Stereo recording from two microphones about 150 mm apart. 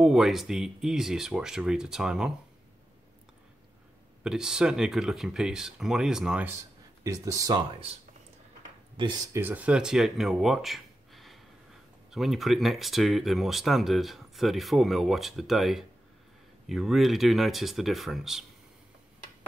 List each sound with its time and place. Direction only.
0.0 s speech: centre (ahead or behind)
4.2 s speech: 5° right (ahead or behind)
7.0 s speech: 20° right (ahead or behind)
8.9 s speech: 35° right (ahead or behind)
9.3 s speech: 15° right (ahead or behind)